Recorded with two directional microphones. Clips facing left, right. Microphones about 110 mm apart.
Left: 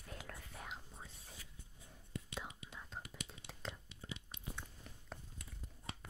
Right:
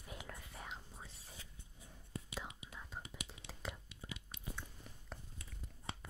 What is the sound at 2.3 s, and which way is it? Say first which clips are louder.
Whispering: even; centre (ahead or behind).